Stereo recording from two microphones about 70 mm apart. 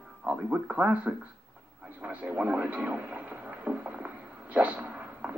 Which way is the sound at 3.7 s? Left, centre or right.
Right.